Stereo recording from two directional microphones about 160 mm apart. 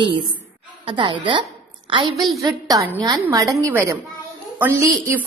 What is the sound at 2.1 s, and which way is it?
Speech, centre (ahead or behind).